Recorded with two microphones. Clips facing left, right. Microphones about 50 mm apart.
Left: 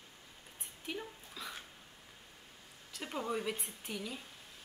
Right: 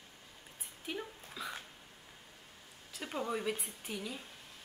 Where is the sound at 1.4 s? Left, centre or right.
Centre.